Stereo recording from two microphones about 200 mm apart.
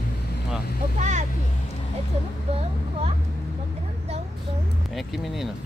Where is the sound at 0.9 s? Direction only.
35° right (ahead or behind).